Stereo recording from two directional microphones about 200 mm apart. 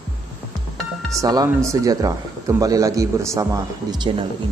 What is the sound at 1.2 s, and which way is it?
Speech, 20° right (ahead or behind).